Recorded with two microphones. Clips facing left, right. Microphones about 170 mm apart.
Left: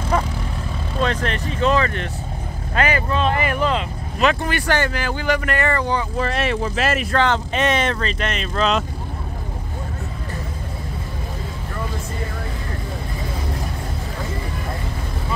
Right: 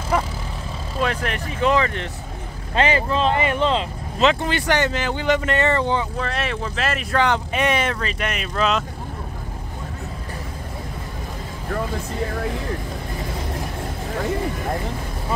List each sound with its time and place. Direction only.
1.0 s speech: 10° right (ahead or behind)
2.7 s speech: 25° right (ahead or behind)
6.1 s speech: 5° left (ahead or behind)
7.2 s speech: 10° right (ahead or behind)